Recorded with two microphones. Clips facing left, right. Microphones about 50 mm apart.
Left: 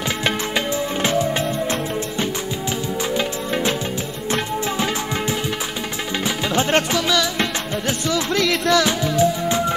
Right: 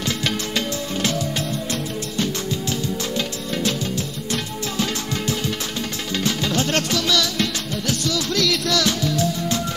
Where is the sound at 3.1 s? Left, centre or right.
Left.